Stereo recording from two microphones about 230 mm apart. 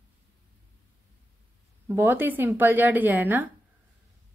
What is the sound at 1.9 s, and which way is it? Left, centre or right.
A woman's voice, centre.